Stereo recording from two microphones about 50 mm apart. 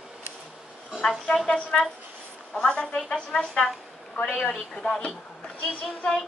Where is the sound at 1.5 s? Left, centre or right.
Centre.